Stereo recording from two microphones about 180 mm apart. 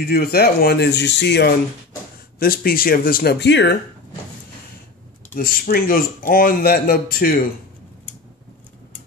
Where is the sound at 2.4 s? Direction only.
55° left (ahead or behind); by 3.7 s 70° left (ahead or behind).